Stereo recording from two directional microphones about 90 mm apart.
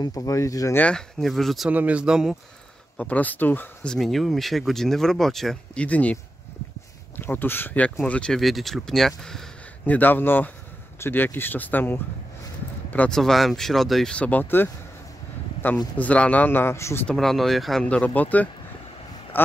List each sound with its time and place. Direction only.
0.0 s speech: 40° left (ahead or behind)
0.7 s speech: 15° left (ahead or behind)
1.2 s speech: centre (ahead or behind)
1.7 s speech: 15° right (ahead or behind)
3.0 s speech: 15° left (ahead or behind)
3.8 s speech: 5° left (ahead or behind)
5.8 s speech: 15° left (ahead or behind)
7.2 s speech: 25° left (ahead or behind); by 9.5 s 5° left (ahead or behind)
9.8 s speech: 20° left (ahead or behind)
13.1 s speech: 5° left (ahead or behind)
14.1 s speech: 15° left (ahead or behind)
16.0 s speech: 15° left (ahead or behind)
17.1 s speech: 5° left (ahead or behind)
17.8 s speech: 15° left (ahead or behind)